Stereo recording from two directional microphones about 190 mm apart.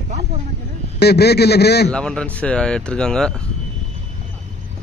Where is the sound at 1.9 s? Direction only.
5° left (ahead or behind).